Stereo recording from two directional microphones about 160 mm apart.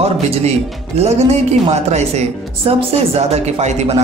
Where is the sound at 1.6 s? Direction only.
45° right (ahead or behind).